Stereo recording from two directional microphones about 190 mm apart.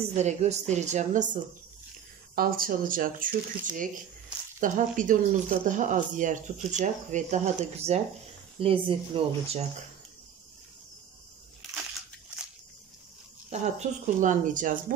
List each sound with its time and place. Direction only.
0.1 s speech: 35° right (ahead or behind)
13.5 s speech: 40° right (ahead or behind)